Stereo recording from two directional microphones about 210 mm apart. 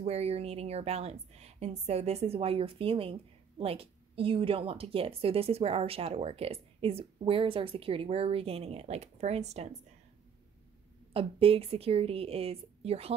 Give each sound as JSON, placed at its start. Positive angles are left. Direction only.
{"t": 0.0, "sound": "a woman's voice", "side_deg": -30}
{"t": 11.1, "sound": "a woman's voice", "side_deg": -25}